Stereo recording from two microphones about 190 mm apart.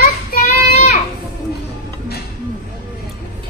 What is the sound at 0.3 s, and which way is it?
Child singing, 55° left (ahead or behind).